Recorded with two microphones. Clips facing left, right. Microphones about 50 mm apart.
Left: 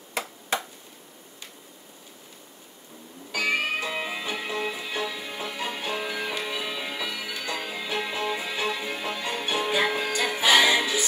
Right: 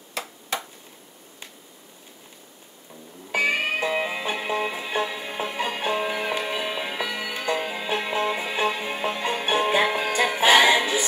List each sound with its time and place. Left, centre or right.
3.3 s music: right
10.7 s choir: right